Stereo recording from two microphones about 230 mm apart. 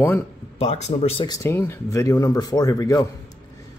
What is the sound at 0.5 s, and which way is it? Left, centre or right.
Speech, left.